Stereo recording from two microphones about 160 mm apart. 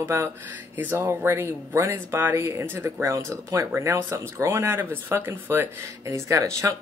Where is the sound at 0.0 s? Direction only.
15° right (ahead or behind).